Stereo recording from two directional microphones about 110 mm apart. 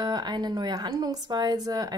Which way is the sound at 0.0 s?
40° right (ahead or behind).